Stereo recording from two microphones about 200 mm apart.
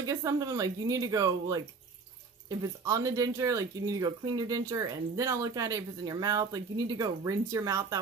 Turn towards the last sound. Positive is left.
turn(degrees=-15)  # may be behind; listen again after turning